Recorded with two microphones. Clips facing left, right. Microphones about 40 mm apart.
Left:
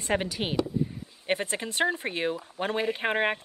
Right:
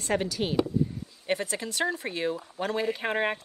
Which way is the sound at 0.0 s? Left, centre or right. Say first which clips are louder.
Even; left.